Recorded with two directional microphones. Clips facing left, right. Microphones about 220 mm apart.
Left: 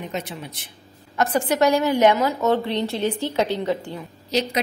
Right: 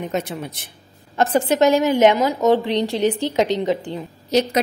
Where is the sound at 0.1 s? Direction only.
50° right (ahead or behind).